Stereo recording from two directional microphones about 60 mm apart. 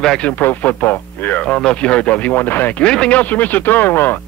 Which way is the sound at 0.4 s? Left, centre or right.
Left.